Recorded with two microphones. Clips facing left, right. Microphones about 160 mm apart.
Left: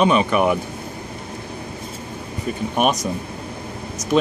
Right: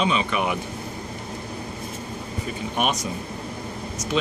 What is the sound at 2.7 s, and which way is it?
Speech, 45° left (ahead or behind).